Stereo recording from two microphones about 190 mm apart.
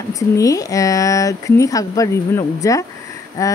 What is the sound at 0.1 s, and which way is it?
Speech, 15° left (ahead or behind).